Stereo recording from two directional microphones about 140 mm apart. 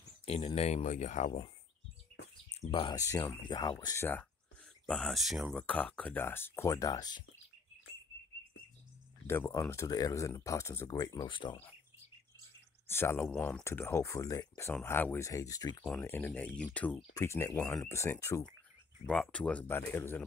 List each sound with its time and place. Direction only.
0.2 s a sound: 45° left (ahead or behind)
0.6 s speech: 50° left (ahead or behind)
2.5 s speech: 45° left (ahead or behind)
3.0 s speech: 25° left (ahead or behind)
3.8 s speech: 20° left (ahead or behind)
4.8 s speech: 5° left (ahead or behind); by 7.2 s 30° left (ahead or behind)
9.5 s speech: 20° left (ahead or behind)
12.8 s speech: 15° left (ahead or behind)
13.7 s speech: 20° left (ahead or behind)
14.7 s speech: 10° left (ahead or behind)
15.8 s speech: 5° left (ahead or behind)
17.1 s speech: 20° left (ahead or behind)
19.0 s speech: 10° left (ahead or behind)